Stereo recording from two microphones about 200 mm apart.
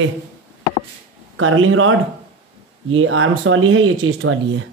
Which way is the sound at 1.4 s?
90° right.